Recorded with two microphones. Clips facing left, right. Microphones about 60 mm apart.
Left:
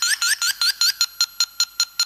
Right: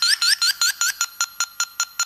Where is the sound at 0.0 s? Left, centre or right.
Centre.